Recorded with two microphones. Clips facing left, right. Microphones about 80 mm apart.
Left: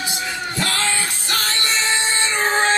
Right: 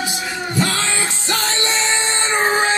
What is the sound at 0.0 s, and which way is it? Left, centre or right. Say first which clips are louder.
Music: right 2 dB; centre.